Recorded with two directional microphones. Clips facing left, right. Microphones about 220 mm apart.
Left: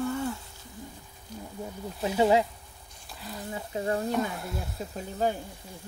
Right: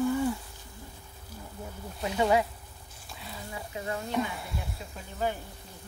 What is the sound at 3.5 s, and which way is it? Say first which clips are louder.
Speech: left 6 dB; 35° left (ahead or behind).